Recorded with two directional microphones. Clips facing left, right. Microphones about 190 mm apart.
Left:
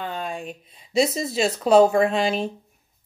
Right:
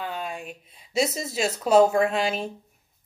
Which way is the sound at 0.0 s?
5° right (ahead or behind).